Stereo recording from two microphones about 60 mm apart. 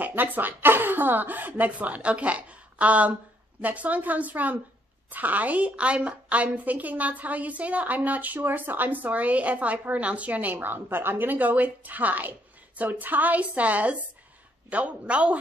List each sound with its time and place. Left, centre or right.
0.0 s a woman's voice: right